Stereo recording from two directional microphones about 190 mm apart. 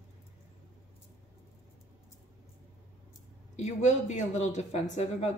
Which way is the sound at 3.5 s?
35° left (ahead or behind).